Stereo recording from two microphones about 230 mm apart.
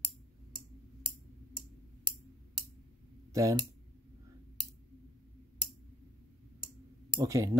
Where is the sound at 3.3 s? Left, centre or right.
Centre.